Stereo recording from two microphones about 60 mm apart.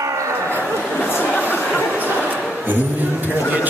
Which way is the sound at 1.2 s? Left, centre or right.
Left.